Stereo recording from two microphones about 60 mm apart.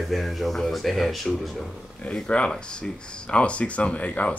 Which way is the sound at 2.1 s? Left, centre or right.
Centre.